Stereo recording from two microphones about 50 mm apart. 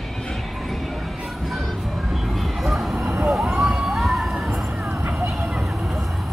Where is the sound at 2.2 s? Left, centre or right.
Centre.